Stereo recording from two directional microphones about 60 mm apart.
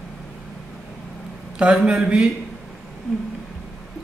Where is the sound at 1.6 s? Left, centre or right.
Centre.